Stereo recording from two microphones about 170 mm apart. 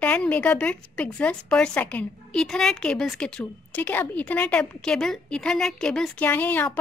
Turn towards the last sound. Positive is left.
turn(degrees=10)  # may be behind; listen again after turning